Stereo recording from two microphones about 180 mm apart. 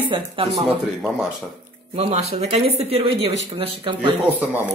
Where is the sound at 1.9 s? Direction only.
35° right (ahead or behind).